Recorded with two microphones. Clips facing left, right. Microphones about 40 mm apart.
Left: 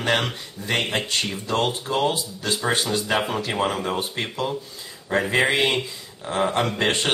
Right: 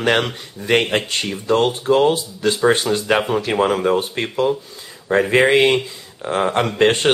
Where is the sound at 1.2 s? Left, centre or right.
Centre.